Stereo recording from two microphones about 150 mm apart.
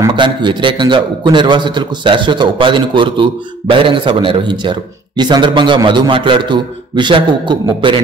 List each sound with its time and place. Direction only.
0.0 s a man's voice: 30° right (ahead or behind)